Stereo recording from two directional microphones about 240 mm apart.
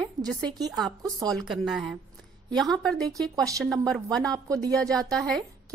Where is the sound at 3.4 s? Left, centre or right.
Centre.